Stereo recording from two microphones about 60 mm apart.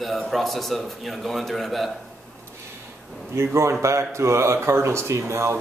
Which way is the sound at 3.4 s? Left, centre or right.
Right.